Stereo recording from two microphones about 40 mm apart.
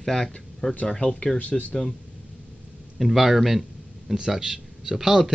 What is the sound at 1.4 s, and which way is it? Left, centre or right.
Speech, left.